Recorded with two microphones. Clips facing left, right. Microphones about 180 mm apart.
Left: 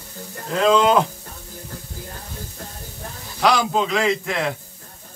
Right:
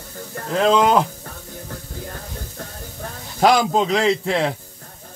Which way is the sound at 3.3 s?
45° right (ahead or behind).